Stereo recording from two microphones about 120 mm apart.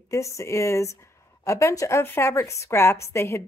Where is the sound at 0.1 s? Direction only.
25° left (ahead or behind).